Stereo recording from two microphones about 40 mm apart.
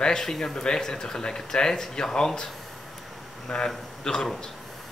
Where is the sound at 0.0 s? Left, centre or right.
Centre.